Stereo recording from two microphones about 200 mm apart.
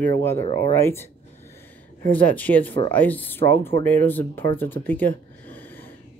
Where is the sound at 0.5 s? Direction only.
10° left (ahead or behind).